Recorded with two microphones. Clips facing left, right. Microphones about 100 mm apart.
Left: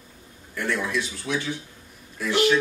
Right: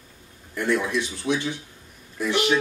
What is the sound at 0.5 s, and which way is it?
Speech, 20° right (ahead or behind).